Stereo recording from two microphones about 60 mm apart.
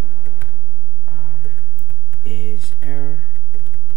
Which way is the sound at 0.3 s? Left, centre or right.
Left.